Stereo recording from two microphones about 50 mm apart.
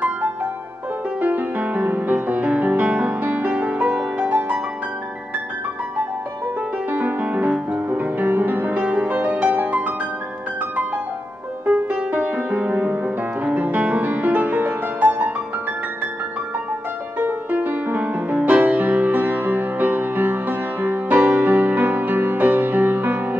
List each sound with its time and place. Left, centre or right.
1.2 s music: right
6.9 s music: right
11.6 s music: right
17.2 s music: right